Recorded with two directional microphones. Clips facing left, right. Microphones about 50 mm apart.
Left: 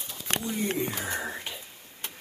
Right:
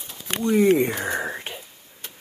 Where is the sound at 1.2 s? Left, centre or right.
Right.